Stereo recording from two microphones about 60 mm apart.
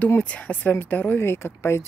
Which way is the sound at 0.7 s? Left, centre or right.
Left.